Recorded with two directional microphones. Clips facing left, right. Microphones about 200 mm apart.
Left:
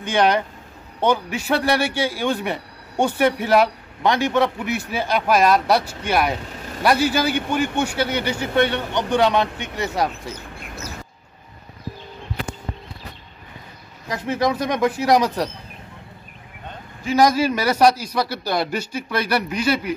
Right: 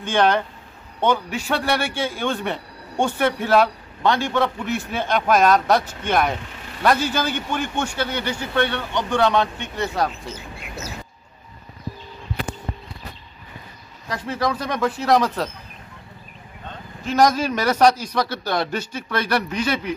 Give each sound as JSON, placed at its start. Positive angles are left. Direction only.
{"t": 0.0, "sound": "a man's voice", "side_deg": 15}
{"t": 14.0, "sound": "a man's voice", "side_deg": 20}
{"t": 17.0, "sound": "a man's voice", "side_deg": 10}